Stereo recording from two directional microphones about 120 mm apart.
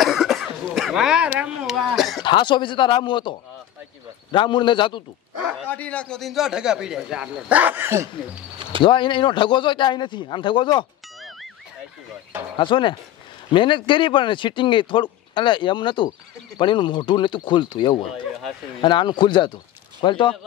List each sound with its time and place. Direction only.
0.0 s cough: centre (ahead or behind)
0.7 s speech: centre (ahead or behind)
2.2 s a man's voice: 40° left (ahead or behind)
5.7 s speech: 10° left (ahead or behind); by 8.1 s 20° right (ahead or behind)
8.8 s a man's voice: 45° left (ahead or behind)
12.5 s a man's voice: 45° left (ahead or behind)